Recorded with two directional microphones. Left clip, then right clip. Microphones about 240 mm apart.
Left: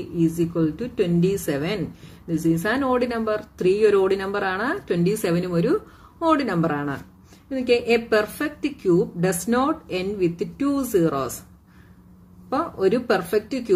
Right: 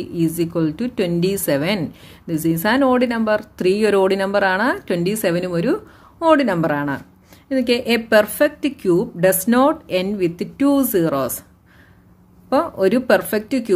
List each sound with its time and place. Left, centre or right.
0.2 s speech: right
12.4 s speech: right